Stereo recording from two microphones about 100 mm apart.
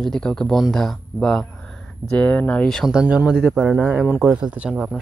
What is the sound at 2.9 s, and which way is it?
Speech, 10° right (ahead or behind).